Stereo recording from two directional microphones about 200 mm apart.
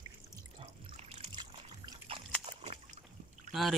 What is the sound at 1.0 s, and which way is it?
Trickle, 30° right (ahead or behind).